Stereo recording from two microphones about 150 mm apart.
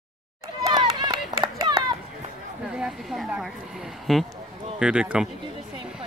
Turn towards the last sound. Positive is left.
turn(degrees=-5)  # may be behind; listen again after turning